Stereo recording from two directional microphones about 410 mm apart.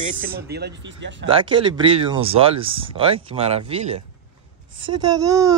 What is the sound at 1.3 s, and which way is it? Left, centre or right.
Speech, centre.